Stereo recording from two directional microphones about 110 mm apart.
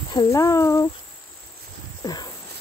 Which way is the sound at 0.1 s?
30° left (ahead or behind).